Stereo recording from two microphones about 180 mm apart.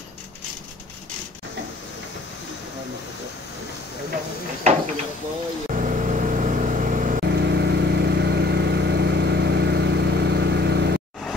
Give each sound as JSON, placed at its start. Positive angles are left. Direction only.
{"t": 5.8, "sound": "vehicle", "side_deg": -45}
{"t": 7.2, "sound": "vehicle", "side_deg": -70}